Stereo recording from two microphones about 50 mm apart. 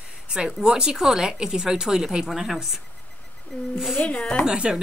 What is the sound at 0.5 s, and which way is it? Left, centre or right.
A woman's voice, centre.